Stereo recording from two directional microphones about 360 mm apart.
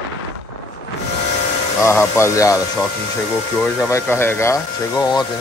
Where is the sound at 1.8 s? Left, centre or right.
Centre.